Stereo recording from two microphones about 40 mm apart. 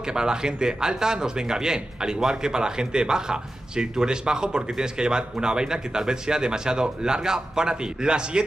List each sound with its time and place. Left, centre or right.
0.1 s speech: centre